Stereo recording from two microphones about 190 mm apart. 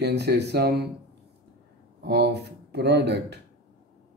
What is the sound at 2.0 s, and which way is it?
Speech, 60° right (ahead or behind).